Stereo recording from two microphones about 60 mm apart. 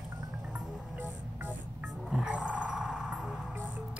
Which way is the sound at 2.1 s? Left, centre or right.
Centre.